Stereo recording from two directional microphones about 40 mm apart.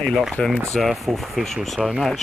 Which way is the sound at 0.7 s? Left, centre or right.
Centre.